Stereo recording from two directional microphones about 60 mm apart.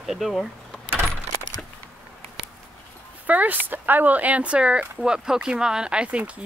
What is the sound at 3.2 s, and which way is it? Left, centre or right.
A woman's voice, right.